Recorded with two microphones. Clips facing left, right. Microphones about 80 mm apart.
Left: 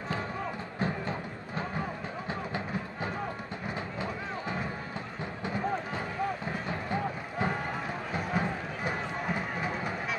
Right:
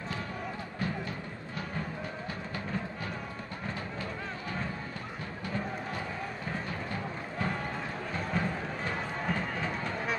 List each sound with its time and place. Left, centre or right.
0.7 s music: left
3.6 s music: centre
6.9 s a sound: left
8.1 s run: centre